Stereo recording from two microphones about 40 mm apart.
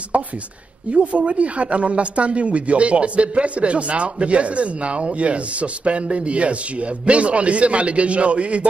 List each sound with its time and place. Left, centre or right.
0.1 s speech: right